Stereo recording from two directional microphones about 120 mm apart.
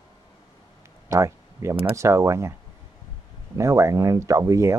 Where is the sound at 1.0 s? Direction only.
25° right (ahead or behind).